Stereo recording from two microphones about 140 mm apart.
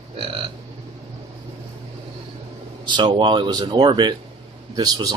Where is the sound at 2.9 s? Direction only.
30° right (ahead or behind).